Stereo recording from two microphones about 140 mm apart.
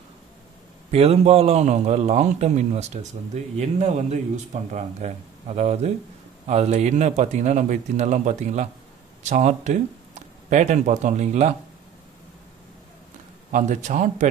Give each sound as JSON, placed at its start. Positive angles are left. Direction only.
{"t": 0.9, "sound": "a man's voice", "side_deg": -45}
{"t": 13.5, "sound": "a man's voice", "side_deg": -60}